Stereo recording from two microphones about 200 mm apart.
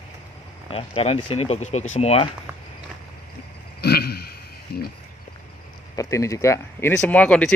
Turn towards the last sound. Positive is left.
turn(degrees=5)  # may be behind; listen again after turning